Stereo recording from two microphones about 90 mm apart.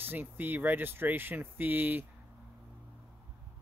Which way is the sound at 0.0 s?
20° right (ahead or behind).